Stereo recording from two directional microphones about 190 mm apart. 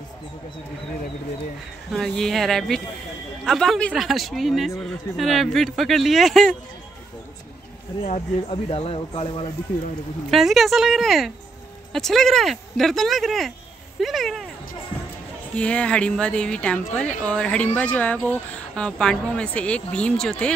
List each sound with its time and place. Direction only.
1.9 s speech: centre (ahead or behind)
8.0 s speech: 30° left (ahead or behind)
10.3 s speech: centre (ahead or behind)
15.5 s speech: 5° left (ahead or behind)